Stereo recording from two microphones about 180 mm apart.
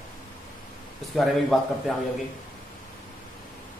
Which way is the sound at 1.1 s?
Centre (ahead or behind).